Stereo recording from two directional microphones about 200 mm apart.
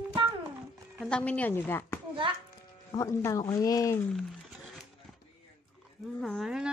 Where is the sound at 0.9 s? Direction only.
5° left (ahead or behind).